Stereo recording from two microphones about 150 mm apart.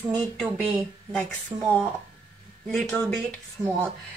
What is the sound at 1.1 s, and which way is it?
Speech, 5° left (ahead or behind).